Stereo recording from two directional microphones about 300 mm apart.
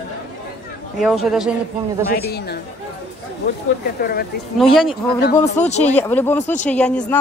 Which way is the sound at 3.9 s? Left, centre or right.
Left.